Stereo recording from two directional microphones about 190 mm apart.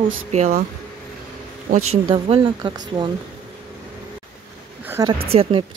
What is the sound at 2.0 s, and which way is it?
Speech, 25° right (ahead or behind).